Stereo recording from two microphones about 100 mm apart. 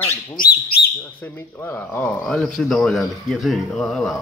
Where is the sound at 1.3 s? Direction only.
20° left (ahead or behind).